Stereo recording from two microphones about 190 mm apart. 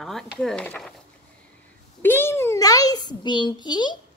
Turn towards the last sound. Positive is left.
turn(degrees=25)  # may be behind; listen again after turning